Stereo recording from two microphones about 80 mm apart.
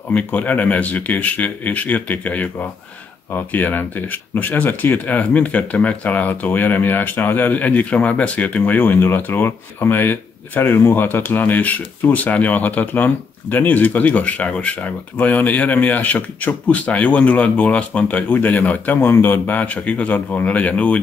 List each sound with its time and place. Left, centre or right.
0.1 s speech: centre